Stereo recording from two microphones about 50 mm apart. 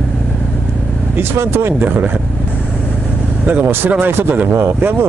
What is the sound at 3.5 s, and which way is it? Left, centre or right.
Speech, right.